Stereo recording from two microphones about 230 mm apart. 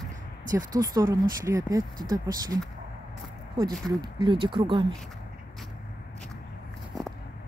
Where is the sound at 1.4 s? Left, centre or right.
Centre.